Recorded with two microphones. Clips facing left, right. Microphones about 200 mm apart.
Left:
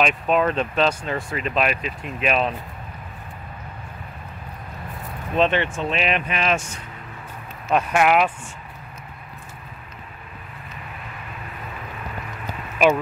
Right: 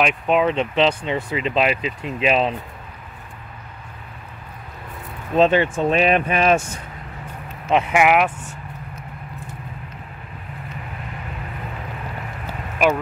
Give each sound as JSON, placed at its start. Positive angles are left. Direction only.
{"t": 0.0, "sound": "speech", "side_deg": -15}
{"t": 5.3, "sound": "speech", "side_deg": -40}
{"t": 7.7, "sound": "speech", "side_deg": -10}